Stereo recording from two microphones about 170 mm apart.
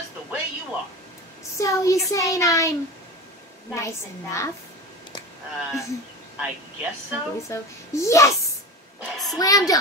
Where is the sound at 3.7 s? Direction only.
15° left (ahead or behind).